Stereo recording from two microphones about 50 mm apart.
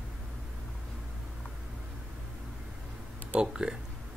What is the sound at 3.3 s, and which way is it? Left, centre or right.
Speech, centre.